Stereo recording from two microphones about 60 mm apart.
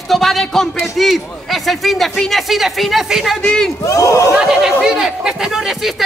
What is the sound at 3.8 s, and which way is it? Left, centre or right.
Speech, left.